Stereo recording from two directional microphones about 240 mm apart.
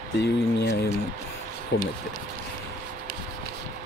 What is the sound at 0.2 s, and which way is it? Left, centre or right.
Speech, left.